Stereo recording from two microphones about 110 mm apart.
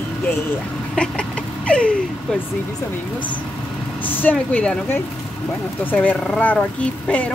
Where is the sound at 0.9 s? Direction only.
10° left (ahead or behind).